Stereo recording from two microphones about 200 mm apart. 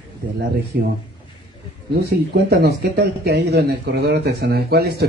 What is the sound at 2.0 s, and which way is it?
Speech, 55° right (ahead or behind).